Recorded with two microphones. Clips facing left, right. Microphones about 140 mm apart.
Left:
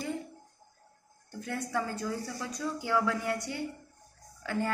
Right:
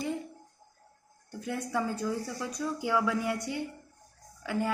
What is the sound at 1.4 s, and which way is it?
A woman's voice, 15° right (ahead or behind).